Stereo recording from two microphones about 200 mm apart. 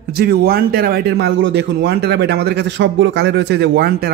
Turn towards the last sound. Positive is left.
turn(degrees=-55)  # may be behind; listen again after turning